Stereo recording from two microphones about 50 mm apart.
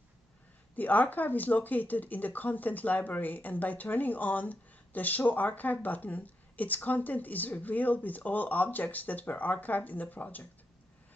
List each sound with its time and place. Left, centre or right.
0.7 s speech: left